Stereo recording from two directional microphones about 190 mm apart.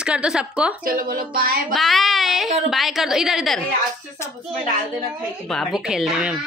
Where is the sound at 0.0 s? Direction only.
5° right (ahead or behind).